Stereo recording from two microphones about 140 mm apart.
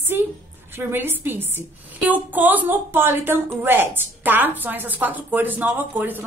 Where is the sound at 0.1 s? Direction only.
15° right (ahead or behind).